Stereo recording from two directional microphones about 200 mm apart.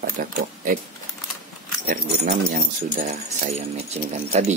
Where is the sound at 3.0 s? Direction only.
35° right (ahead or behind).